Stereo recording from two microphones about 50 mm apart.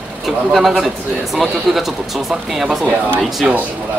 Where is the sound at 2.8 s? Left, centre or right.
Right.